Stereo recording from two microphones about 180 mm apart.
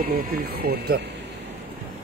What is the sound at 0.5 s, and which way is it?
Speech, 60° right (ahead or behind).